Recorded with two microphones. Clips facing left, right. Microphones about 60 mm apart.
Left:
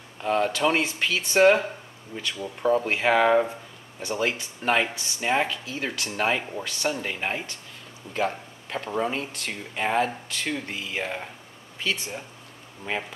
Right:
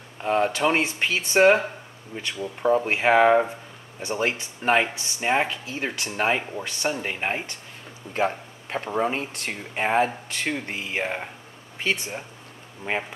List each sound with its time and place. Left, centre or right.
0.2 s speech: centre
12.9 s speech: right